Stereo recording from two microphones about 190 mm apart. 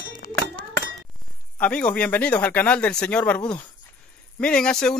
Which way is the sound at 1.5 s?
5° left (ahead or behind).